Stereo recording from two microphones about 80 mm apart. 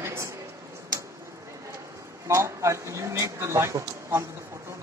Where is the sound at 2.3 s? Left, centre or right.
Right.